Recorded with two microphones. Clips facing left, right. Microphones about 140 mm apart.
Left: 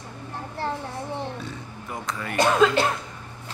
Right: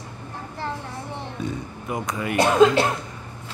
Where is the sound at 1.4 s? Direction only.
15° right (ahead or behind).